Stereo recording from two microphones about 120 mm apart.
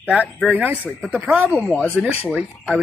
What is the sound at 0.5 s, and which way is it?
Speech, 15° right (ahead or behind).